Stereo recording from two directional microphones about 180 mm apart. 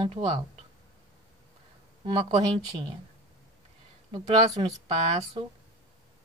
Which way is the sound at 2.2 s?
35° right (ahead or behind).